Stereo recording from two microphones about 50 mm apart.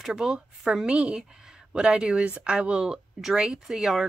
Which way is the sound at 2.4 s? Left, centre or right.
Centre.